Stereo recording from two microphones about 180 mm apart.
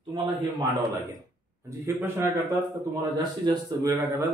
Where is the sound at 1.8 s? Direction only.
15° right (ahead or behind).